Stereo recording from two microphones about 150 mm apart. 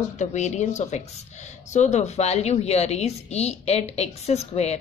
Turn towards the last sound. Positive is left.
turn(degrees=45)  # may be behind; listen again after turning